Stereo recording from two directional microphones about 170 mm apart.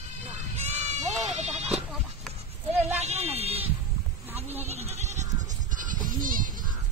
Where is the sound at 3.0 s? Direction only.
40° right (ahead or behind).